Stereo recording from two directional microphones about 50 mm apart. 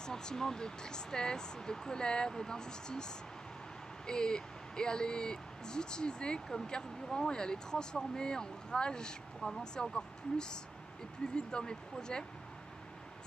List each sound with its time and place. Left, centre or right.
0.0 s speech: centre